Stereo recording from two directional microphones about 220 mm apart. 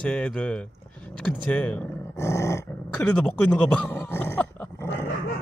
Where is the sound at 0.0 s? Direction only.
5° left (ahead or behind).